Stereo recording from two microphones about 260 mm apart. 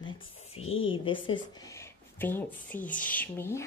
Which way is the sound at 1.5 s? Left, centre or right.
Centre.